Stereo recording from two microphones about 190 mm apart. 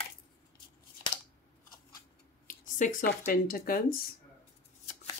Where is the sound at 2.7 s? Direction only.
45° left (ahead or behind).